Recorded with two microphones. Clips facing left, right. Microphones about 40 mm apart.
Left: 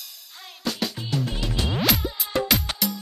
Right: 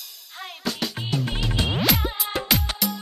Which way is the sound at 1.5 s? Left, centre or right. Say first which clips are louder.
Right 2 dB; right.